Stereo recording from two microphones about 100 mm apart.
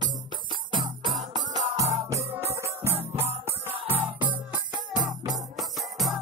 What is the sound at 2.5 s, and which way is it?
Music, 30° right (ahead or behind).